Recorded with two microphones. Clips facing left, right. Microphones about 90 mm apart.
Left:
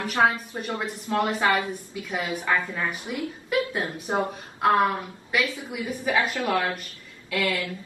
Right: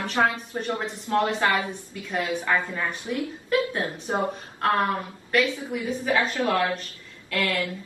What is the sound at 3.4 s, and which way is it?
A woman's voice, 15° left (ahead or behind).